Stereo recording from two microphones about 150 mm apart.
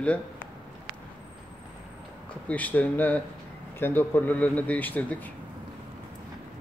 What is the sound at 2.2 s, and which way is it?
A man's voice, 10° left (ahead or behind).